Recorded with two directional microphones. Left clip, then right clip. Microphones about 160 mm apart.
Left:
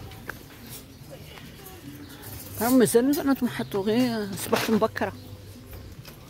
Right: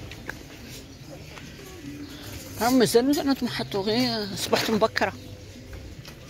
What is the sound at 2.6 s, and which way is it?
Speech, 35° left (ahead or behind).